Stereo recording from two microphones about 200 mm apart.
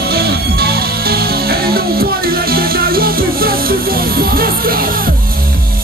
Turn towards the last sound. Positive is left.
turn(degrees=-45)  # may be behind; listen again after turning